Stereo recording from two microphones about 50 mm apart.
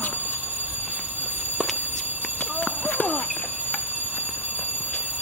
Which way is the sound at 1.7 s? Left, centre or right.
Right.